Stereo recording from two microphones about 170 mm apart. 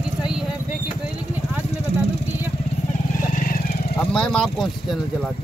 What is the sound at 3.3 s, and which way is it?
Vehicle, 55° left (ahead or behind).